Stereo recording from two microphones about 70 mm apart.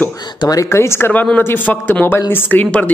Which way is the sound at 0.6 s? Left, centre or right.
Left.